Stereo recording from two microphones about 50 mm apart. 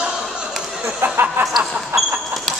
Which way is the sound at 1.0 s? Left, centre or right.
Right.